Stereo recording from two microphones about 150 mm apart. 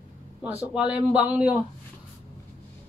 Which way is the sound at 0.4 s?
10° right (ahead or behind).